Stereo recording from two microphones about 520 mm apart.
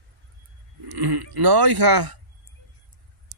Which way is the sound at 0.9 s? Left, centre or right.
Right.